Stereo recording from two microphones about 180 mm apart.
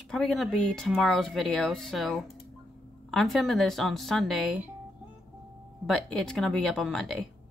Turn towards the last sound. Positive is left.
turn(degrees=0)  # may be behind; listen again after turning